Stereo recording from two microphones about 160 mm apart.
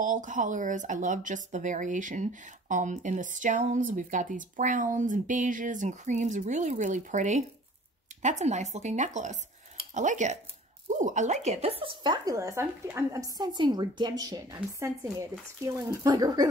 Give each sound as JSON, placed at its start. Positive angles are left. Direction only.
{"t": 0.0, "sound": "speech", "side_deg": -55}